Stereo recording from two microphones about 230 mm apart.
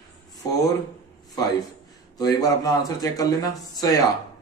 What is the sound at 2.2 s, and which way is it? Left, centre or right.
Speech, centre.